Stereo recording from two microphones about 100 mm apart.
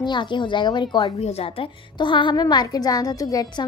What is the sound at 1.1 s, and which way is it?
A woman's voice, 90° left.